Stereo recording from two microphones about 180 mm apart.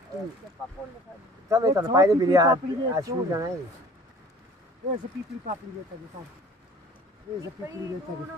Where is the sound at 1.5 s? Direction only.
20° right (ahead or behind).